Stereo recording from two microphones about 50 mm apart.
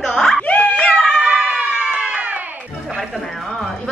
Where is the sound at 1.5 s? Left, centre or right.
Right.